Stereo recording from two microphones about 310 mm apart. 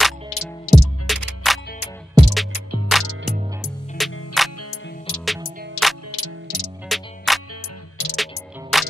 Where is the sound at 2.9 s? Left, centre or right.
Centre.